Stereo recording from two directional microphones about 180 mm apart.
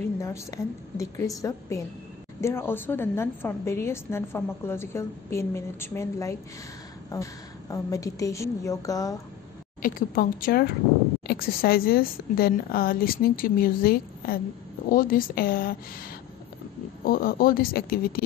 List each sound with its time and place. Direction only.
0.2 s a woman's voice: 15° left (ahead or behind)
9.8 s a woman's voice: 50° left (ahead or behind)
17.0 s a woman's voice: 55° left (ahead or behind)